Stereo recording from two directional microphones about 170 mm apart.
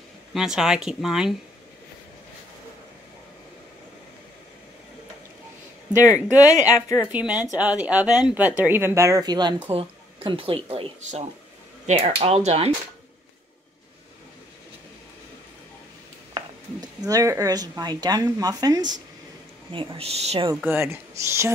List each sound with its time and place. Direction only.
0.3 s speech: 5° right (ahead or behind)
6.3 s speech: 20° left (ahead or behind)
7.1 s speech: 10° right (ahead or behind); by 12.7 s 40° right (ahead or behind)
16.3 s speech: 20° right (ahead or behind); by 20.4 s 35° right (ahead or behind)
20.6 s speech: 15° right (ahead or behind)